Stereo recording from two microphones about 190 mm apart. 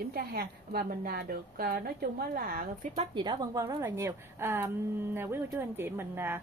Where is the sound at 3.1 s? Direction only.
25° right (ahead or behind).